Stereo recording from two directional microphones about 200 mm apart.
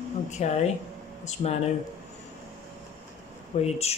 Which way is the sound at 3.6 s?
30° left (ahead or behind).